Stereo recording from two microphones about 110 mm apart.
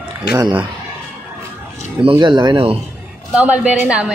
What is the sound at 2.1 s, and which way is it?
Speech, 45° right (ahead or behind).